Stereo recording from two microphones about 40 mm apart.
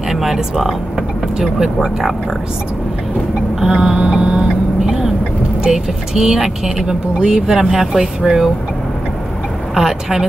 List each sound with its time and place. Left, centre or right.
0.1 s speech: centre
3.6 s a sound: centre
4.0 s vehicle: right
5.6 s speech: centre
9.8 s speech: centre